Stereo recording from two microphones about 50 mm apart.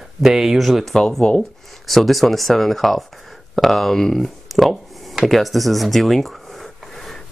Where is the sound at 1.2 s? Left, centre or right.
Left.